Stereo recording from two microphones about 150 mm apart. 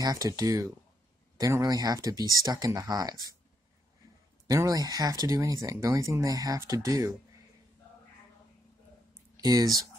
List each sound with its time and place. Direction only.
0.0 s speech: 25° right (ahead or behind)
4.5 s speech: 25° right (ahead or behind)
9.4 s speech: 25° right (ahead or behind)